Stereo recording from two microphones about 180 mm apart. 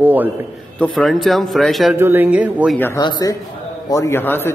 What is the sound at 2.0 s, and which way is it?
Speech, 10° right (ahead or behind).